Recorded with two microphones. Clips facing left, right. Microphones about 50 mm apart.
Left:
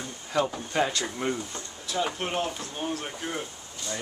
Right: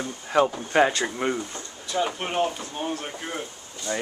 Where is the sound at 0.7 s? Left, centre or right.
Right.